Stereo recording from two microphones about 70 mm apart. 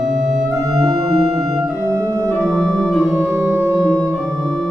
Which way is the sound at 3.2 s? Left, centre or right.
Right.